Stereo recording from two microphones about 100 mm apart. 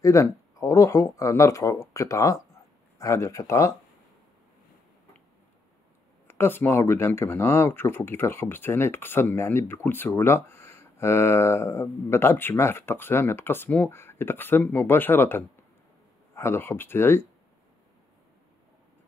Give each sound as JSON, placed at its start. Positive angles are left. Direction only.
{"t": 0.0, "sound": "speech", "side_deg": 30}
{"t": 6.2, "sound": "speech", "side_deg": 25}